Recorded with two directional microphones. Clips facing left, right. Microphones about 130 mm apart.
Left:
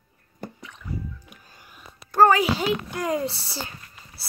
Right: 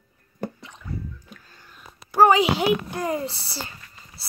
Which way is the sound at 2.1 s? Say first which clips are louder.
Right 1 dB; 10° right (ahead or behind).